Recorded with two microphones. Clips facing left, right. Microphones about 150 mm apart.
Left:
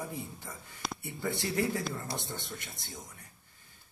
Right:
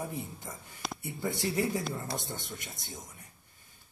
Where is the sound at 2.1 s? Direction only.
Centre (ahead or behind).